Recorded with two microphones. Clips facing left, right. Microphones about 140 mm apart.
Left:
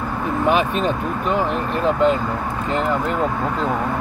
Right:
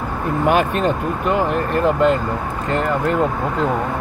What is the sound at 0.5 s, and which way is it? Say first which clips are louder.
Speech: right 2 dB; 50° right (ahead or behind).